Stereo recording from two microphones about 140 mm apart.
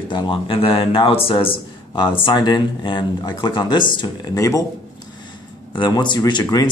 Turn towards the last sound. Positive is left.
turn(degrees=30)  # may be behind; listen again after turning